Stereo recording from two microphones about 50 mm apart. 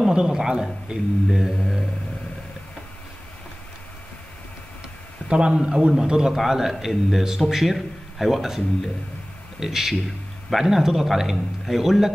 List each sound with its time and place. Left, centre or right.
0.0 s a man's voice: centre
1.6 s a man's voice: centre
5.3 s a man's voice: centre